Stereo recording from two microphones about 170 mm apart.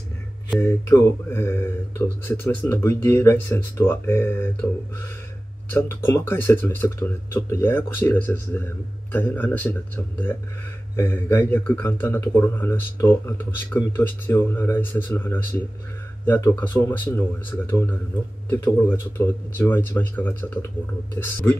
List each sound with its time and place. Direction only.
0.5 s speech: 10° left (ahead or behind)
5.7 s speech: 15° left (ahead or behind)